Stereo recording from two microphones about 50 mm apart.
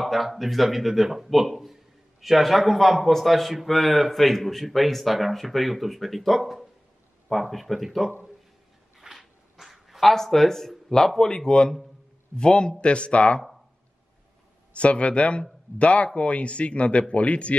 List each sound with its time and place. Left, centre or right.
0.0 s a man's voice: centre
9.0 s a sound: centre
11.1 s a man's voice: centre
14.7 s a man's voice: left